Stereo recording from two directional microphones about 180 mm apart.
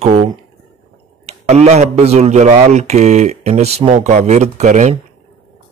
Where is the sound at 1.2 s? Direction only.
35° right (ahead or behind).